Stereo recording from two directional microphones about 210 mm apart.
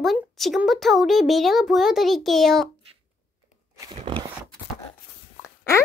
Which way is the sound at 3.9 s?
25° right (ahead or behind).